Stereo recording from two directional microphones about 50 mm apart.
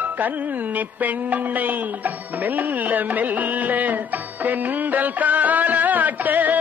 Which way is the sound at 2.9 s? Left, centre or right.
Right.